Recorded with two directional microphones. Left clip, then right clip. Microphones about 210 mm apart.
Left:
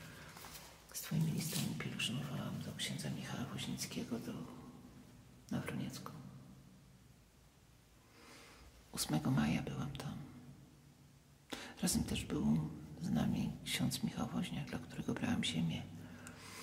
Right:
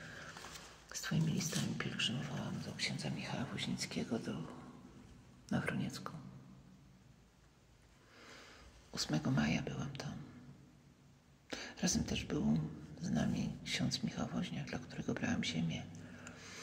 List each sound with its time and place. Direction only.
0.8 s a sound: 15° right (ahead or behind)
2.8 s speech: 10° right (ahead or behind)
5.5 s speech: 20° right (ahead or behind)
8.2 s a sound: centre (ahead or behind)
8.9 s speech: 10° left (ahead or behind)
11.4 s speech: 10° left (ahead or behind)